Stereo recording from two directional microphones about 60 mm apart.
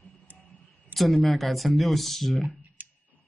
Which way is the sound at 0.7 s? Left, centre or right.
Centre.